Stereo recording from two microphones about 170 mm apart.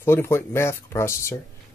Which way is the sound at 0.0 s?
15° left (ahead or behind).